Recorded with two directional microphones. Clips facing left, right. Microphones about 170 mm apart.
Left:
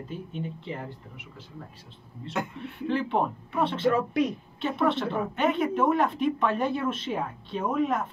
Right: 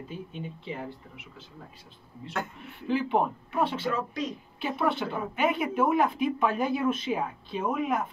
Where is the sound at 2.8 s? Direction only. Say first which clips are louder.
Even; 5° right (ahead or behind).